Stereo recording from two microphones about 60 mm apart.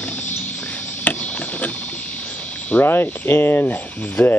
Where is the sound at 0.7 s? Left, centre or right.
Left.